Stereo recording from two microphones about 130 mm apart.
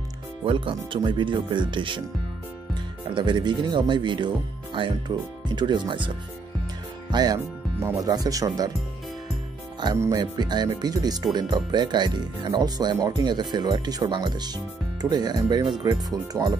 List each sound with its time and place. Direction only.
0.5 s speech: 40° right (ahead or behind)
10.1 s speech: 35° right (ahead or behind)